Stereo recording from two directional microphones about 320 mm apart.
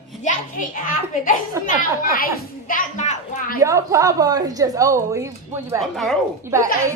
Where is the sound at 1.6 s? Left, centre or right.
Left.